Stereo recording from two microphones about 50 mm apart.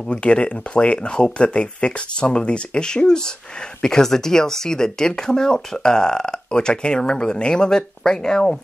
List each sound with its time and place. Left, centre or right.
0.1 s speech: left